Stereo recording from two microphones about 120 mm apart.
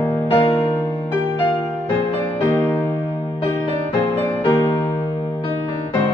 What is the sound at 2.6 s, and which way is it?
Music, 15° left (ahead or behind).